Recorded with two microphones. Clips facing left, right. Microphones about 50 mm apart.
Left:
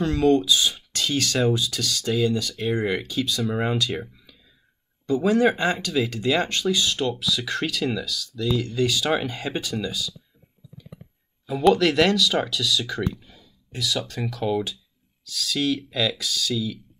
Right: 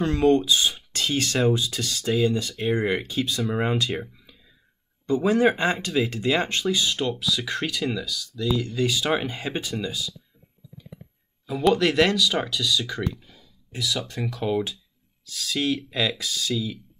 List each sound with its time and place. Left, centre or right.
0.0 s speech: right
3.9 s speech: centre
5.0 s speech: right
11.4 s speech: centre
11.8 s speech: centre
12.3 s speech: centre
14.2 s speech: centre
15.2 s speech: right